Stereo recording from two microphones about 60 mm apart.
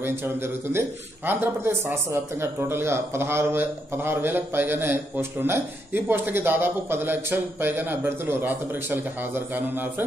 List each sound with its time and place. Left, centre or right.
0.7 s a man's voice: right